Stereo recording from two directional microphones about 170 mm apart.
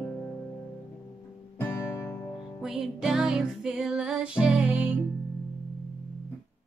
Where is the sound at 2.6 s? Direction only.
5° right (ahead or behind).